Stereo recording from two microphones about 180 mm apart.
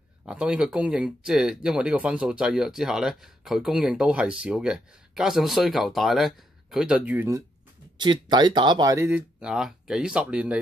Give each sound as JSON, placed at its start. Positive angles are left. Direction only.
{"t": 0.2, "sound": "speech", "side_deg": -5}
{"t": 8.0, "sound": "speech", "side_deg": -25}